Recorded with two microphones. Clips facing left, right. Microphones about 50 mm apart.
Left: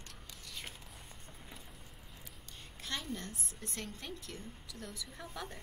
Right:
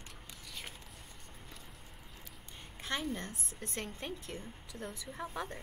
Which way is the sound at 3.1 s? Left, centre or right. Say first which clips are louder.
Right 2 dB; right.